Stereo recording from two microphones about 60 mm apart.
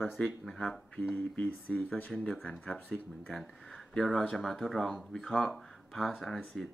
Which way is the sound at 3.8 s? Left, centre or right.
Centre.